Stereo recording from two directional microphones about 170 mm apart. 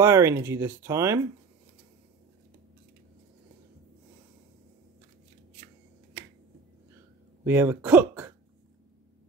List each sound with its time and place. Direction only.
0.0 s speech: 15° right (ahead or behind)
7.4 s speech: 10° right (ahead or behind)